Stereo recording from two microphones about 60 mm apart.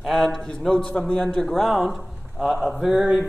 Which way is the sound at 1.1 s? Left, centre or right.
Left.